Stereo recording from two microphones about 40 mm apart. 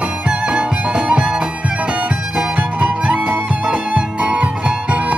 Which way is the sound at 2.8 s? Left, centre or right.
Right.